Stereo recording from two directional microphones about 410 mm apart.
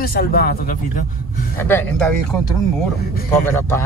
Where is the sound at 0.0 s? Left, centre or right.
Left.